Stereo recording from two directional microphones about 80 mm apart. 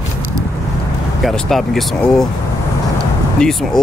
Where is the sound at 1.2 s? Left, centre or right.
Centre.